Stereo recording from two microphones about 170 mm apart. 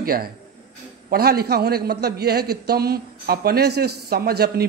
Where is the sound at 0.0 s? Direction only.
60° right (ahead or behind).